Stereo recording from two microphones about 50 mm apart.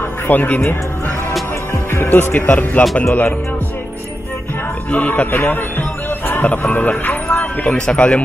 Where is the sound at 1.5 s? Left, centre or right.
Left.